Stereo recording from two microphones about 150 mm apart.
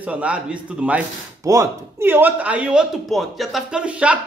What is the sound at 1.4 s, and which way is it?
Speech, 20° right (ahead or behind).